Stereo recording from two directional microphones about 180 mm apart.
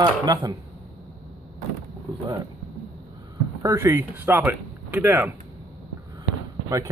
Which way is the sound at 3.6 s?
15° right (ahead or behind).